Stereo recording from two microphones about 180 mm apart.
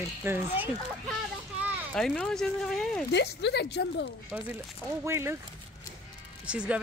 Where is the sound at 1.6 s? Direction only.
10° right (ahead or behind).